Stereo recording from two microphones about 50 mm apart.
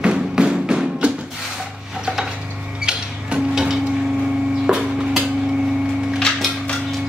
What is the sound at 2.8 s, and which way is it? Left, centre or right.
Music, centre.